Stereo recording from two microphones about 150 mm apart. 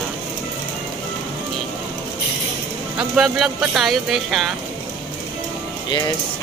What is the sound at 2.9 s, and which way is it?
Speech, 5° right (ahead or behind).